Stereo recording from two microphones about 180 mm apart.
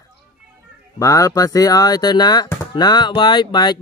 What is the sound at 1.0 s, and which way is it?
Speech, 15° left (ahead or behind).